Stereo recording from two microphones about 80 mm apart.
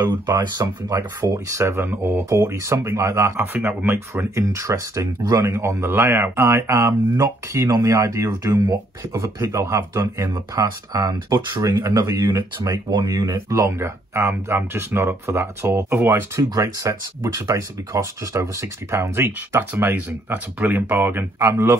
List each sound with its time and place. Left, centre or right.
0.1 s speech: right
1.2 s speech: right
3.3 s speech: right
5.5 s speech: right
8.3 s speech: right
9.1 s speech: right
13.7 s speech: right
16.4 s speech: right
19.7 s speech: right